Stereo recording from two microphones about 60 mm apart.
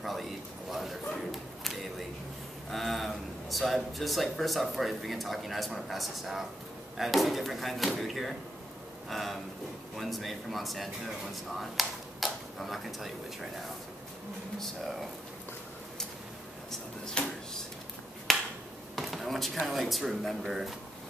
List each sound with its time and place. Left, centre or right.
0.0 s a sound: centre
2.7 s speech: centre
14.6 s speech: centre
17.0 s speech: centre
18.3 s finger snapping: centre
18.9 s speech: centre